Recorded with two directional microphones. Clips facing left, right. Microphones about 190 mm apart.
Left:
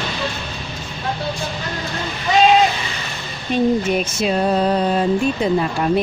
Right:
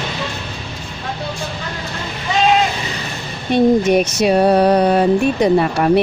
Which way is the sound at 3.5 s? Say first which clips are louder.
Right 5 dB; 75° right (ahead or behind).